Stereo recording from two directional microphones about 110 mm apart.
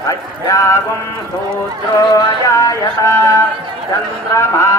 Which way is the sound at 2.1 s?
30° left (ahead or behind).